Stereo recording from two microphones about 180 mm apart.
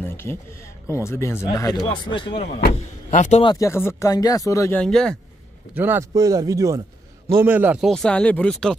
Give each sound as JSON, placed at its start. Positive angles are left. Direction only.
{"t": 0.0, "sound": "speech", "side_deg": 10}
{"t": 2.5, "sound": "speech", "side_deg": 50}
{"t": 3.4, "sound": "speech", "side_deg": 15}
{"t": 4.8, "sound": "speech", "side_deg": 5}
{"t": 5.8, "sound": "speech", "side_deg": -15}